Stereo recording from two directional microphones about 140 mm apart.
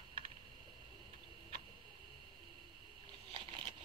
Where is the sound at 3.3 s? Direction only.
35° right (ahead or behind).